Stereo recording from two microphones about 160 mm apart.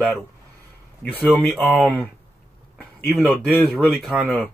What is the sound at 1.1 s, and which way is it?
Speech, 5° left (ahead or behind).